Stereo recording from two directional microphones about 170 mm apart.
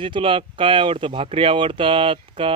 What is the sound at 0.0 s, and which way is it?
Speech, 30° right (ahead or behind).